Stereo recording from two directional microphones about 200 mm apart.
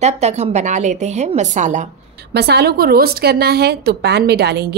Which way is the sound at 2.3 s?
55° right (ahead or behind).